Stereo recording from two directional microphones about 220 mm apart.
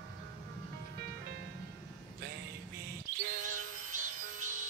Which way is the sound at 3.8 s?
35° right (ahead or behind).